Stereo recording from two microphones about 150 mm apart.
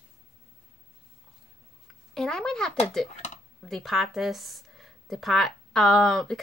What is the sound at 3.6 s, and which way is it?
A woman's voice, centre (ahead or behind).